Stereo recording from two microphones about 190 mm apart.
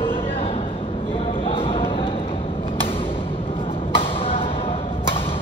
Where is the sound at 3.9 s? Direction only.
30° left (ahead or behind).